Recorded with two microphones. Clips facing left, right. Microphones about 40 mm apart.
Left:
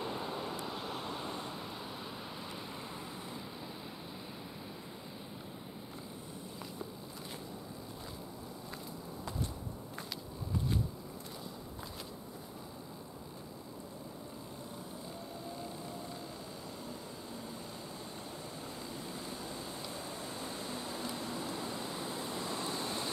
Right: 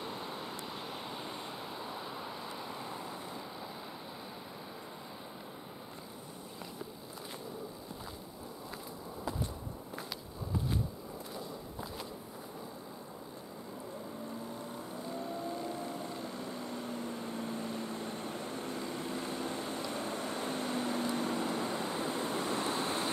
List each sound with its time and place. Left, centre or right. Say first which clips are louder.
0.6 s vehicle: left 2 dB; centre
16.2 s vehicle: right 5 dB; right